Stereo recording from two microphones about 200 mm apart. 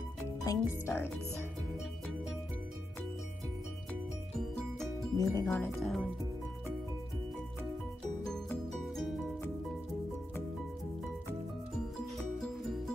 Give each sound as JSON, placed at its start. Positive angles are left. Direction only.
{"t": 0.4, "sound": "speech", "side_deg": 15}
{"t": 5.1, "sound": "speech", "side_deg": 15}
{"t": 5.8, "sound": "speech", "side_deg": 0}
{"t": 8.3, "sound": "music", "side_deg": 5}
{"t": 12.4, "sound": "music", "side_deg": 0}